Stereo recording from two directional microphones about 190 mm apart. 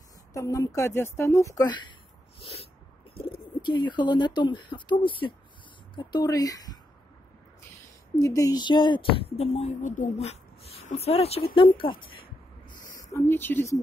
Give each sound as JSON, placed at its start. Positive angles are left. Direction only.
{"t": 0.3, "sound": "speech", "side_deg": 15}
{"t": 2.4, "sound": "a sound", "side_deg": 30}
{"t": 3.6, "sound": "speech", "side_deg": 25}
{"t": 8.2, "sound": "speech", "side_deg": 20}
{"t": 13.1, "sound": "speech", "side_deg": 10}